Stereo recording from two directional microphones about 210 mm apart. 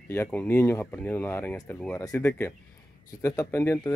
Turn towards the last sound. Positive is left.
turn(degrees=10)  # may be behind; listen again after turning